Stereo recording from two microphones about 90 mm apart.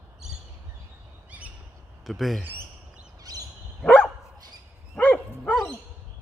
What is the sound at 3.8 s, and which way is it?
Dog, 10° left (ahead or behind).